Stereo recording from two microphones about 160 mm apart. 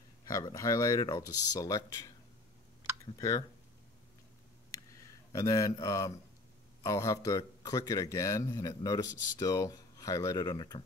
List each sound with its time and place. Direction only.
0.3 s speech: 20° left (ahead or behind)
3.2 s speech: 20° left (ahead or behind)
5.0 s a man's voice: 20° left (ahead or behind)